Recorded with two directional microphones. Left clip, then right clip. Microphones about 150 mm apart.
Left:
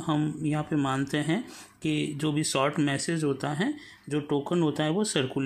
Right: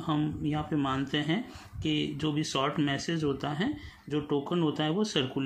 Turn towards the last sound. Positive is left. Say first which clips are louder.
# left 2 dB
turn(degrees=35)  # may be behind; listen again after turning